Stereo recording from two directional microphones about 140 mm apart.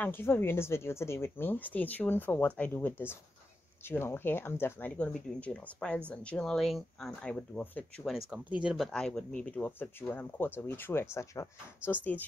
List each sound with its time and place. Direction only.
0.0 s speech: 15° left (ahead or behind)
8.3 s speech: 10° right (ahead or behind); by 12.3 s 10° left (ahead or behind)